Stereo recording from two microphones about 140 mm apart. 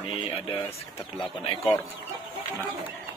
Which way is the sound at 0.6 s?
20° left (ahead or behind).